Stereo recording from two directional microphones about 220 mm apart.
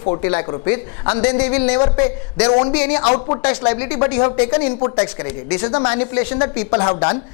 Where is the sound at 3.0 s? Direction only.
30° left (ahead or behind).